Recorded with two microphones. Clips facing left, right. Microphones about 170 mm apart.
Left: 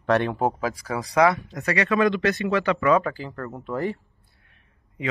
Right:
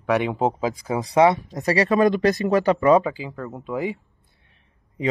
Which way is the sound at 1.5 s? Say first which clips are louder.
Right 4 dB; 40° right (ahead or behind).